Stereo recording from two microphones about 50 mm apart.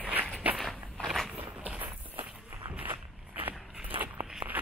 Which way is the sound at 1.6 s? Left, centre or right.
Right.